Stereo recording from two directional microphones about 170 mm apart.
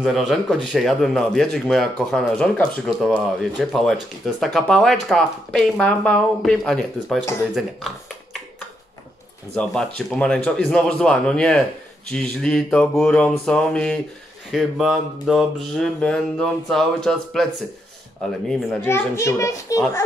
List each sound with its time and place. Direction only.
0.0 s speech: centre (ahead or behind)
7.5 s a sound: centre (ahead or behind)
9.6 s speech: 5° left (ahead or behind)
18.5 s speech: centre (ahead or behind)
18.9 s a child's voice: 15° left (ahead or behind)